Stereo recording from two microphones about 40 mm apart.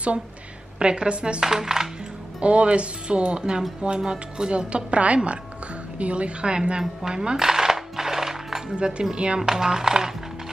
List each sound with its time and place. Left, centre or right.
0.7 s speech: right
1.4 s speech: centre
2.4 s speech: right
6.8 s music: centre
8.6 s speech: right
9.4 s speech: centre